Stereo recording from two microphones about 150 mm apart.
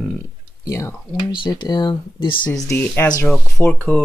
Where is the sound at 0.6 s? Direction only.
25° left (ahead or behind).